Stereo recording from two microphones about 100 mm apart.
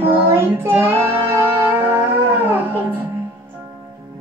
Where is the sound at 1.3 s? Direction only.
20° right (ahead or behind).